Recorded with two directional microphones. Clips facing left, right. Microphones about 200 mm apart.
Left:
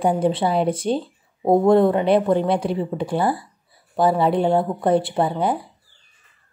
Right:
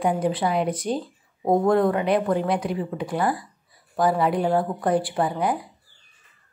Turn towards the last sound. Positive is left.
turn(degrees=25)  # may be behind; listen again after turning